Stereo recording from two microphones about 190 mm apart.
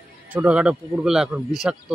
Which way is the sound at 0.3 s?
5° right (ahead or behind).